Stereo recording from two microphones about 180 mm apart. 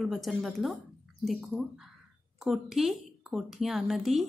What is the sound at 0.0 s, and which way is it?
A woman's voice, centre (ahead or behind).